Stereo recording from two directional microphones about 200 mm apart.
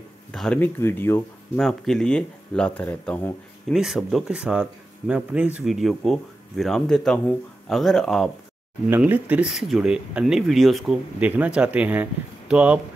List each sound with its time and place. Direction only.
0.3 s speech: 5° left (ahead or behind)